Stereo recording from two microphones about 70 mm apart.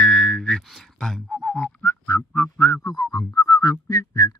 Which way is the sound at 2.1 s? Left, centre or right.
Left.